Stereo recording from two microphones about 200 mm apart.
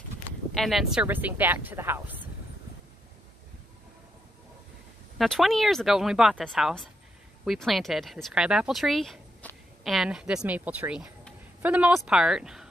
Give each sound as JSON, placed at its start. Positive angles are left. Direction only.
{"t": 0.6, "sound": "speech", "side_deg": 0}
{"t": 5.2, "sound": "speech", "side_deg": 0}